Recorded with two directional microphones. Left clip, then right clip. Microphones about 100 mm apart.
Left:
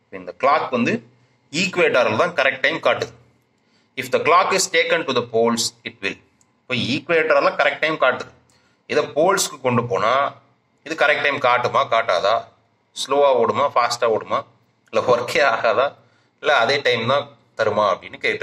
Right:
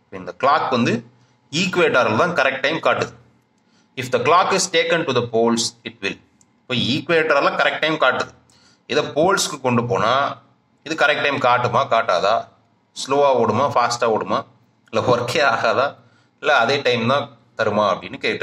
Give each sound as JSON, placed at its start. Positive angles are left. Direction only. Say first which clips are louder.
{"t": 0.1, "sound": "speech", "louder": "even", "side_deg": -40}
{"t": 1.5, "sound": "speech", "louder": "right 1 dB", "side_deg": -40}
{"t": 6.7, "sound": "speech", "louder": "right 1 dB", "side_deg": -45}
{"t": 7.6, "sound": "a man's voice", "louder": "right 1 dB", "side_deg": -35}
{"t": 11.2, "sound": "a man's voice", "louder": "right 1 dB", "side_deg": -25}
{"t": 17.6, "sound": "a man's voice", "louder": "even", "side_deg": -20}
{"t": 18.0, "sound": "speech", "louder": "even", "side_deg": -30}